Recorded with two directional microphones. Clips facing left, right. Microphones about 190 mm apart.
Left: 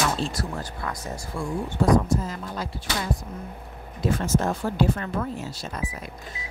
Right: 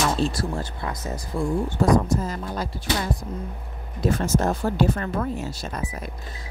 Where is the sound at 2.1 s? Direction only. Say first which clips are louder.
Right 2 dB; 40° right (ahead or behind).